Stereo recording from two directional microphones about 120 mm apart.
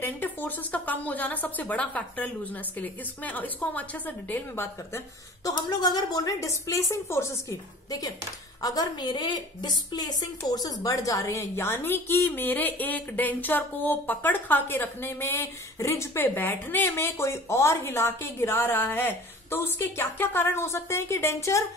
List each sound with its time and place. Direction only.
0.0 s a woman's voice: 15° left (ahead or behind)